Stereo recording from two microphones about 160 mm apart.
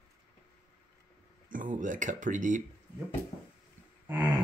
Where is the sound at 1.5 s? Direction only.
55° right (ahead or behind).